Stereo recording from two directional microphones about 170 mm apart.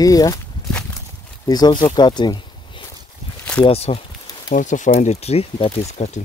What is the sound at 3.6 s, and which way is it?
Speech, 35° left (ahead or behind).